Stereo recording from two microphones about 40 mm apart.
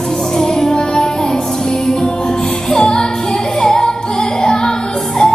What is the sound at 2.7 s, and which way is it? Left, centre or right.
Music, centre.